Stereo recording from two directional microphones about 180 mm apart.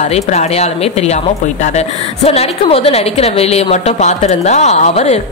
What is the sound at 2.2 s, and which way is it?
A woman's voice, 35° left (ahead or behind).